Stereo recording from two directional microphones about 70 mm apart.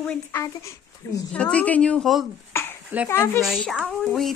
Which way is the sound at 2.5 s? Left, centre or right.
Left.